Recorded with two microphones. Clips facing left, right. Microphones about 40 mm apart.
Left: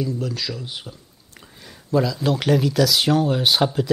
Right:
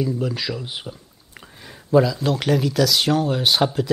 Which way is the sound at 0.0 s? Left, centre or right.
Centre.